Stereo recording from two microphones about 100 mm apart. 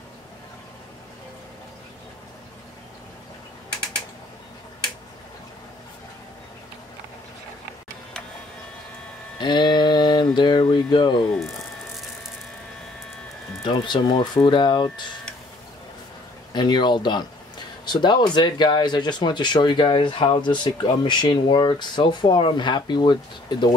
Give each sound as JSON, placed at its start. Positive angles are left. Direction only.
{"t": 9.4, "sound": "music", "side_deg": 50}
{"t": 10.7, "sound": "speech", "side_deg": 50}
{"t": 13.7, "sound": "speech", "side_deg": 50}
{"t": 16.5, "sound": "speech", "side_deg": 50}